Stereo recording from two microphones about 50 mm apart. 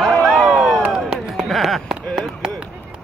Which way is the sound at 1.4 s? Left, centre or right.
Centre.